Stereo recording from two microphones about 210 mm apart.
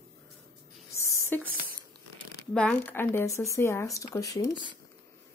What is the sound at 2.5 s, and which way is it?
A woman's voice, 5° left (ahead or behind).